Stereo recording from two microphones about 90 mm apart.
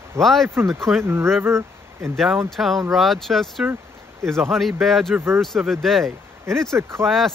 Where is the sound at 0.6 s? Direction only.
30° right (ahead or behind).